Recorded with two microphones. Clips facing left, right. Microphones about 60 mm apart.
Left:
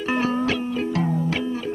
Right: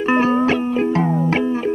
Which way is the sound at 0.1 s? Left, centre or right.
Right.